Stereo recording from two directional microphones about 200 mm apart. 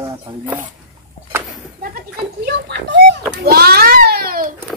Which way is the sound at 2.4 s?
55° right (ahead or behind).